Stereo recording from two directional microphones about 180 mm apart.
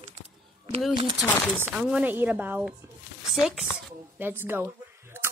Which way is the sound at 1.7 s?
5° right (ahead or behind).